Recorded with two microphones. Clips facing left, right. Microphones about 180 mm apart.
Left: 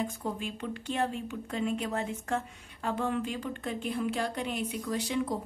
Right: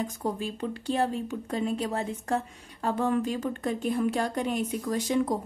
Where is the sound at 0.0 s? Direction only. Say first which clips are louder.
Right 3 dB; 40° right (ahead or behind).